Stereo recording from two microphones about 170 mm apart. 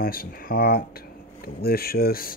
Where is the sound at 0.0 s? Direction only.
60° left (ahead or behind).